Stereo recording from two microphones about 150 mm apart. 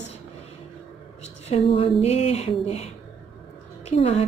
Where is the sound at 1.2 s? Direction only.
45° left (ahead or behind).